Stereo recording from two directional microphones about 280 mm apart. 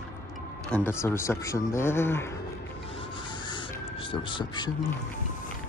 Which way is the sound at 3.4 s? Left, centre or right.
Centre.